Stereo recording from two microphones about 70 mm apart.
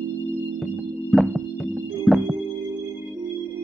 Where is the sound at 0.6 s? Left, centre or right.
Centre.